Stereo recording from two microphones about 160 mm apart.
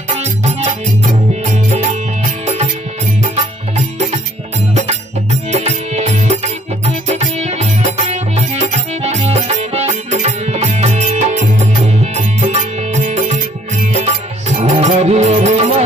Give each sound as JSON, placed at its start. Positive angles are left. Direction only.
{"t": 0.2, "sound": "music", "side_deg": -45}
{"t": 4.7, "sound": "music", "side_deg": -45}